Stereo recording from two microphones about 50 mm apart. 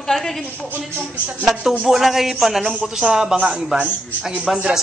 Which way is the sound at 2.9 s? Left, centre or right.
Centre.